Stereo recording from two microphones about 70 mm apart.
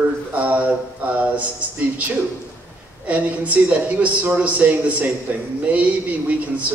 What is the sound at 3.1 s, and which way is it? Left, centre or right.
Speech, right.